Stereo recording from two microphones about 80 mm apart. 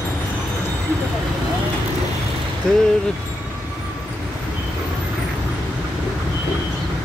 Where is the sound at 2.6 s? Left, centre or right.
Centre.